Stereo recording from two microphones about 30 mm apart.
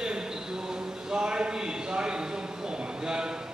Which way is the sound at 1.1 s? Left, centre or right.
Right.